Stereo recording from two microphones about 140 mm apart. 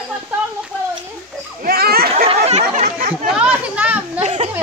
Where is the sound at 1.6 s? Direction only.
90° right.